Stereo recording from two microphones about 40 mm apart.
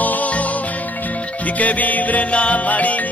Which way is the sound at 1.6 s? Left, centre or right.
Left.